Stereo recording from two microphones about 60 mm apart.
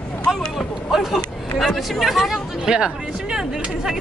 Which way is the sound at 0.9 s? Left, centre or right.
Centre.